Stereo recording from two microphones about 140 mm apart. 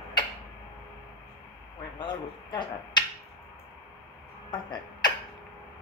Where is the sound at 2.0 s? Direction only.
30° left (ahead or behind).